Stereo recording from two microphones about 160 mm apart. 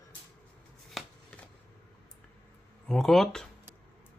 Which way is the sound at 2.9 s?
Centre (ahead or behind).